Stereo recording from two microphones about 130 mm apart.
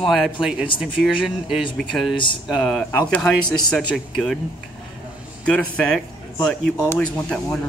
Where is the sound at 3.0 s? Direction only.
10° left (ahead or behind).